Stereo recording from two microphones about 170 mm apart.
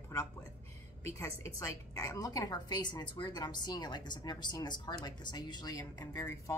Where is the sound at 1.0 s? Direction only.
15° left (ahead or behind).